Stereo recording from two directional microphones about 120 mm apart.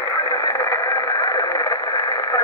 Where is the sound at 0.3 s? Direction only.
25° left (ahead or behind).